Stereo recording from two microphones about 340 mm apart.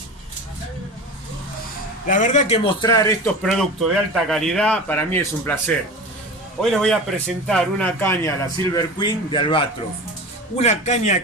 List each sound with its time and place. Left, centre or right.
2.0 s a man's voice: left
3.4 s a man's voice: centre